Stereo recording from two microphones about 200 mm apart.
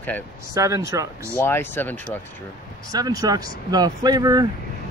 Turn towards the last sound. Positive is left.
turn(degrees=-20)  # may be behind; listen again after turning